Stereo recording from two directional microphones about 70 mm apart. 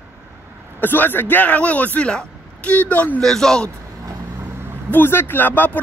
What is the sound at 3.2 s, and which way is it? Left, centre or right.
Speech, centre.